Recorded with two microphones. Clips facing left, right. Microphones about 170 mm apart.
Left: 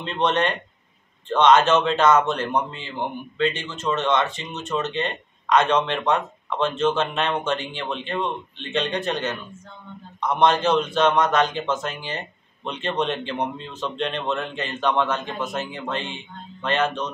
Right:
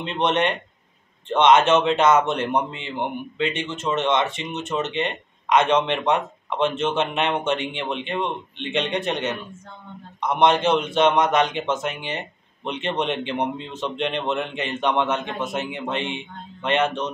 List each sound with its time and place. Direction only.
0.0 s a man's voice: 20° right (ahead or behind)